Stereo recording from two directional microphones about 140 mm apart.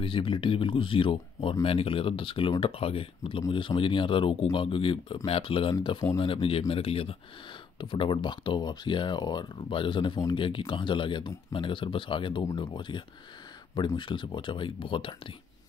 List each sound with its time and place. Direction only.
0.0 s speech: 40° left (ahead or behind)